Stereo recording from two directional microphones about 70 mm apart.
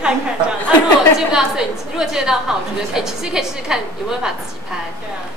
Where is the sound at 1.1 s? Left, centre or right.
Centre.